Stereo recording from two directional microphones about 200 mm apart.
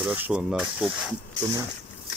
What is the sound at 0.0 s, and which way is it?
Speech, 5° right (ahead or behind).